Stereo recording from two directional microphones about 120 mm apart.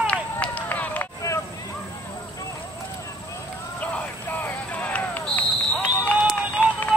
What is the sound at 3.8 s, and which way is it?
Basketball bounce, 15° left (ahead or behind).